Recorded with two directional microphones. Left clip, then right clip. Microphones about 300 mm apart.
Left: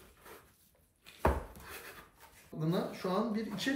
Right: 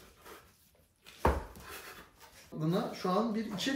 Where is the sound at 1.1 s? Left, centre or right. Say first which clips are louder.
Right 1 dB; centre.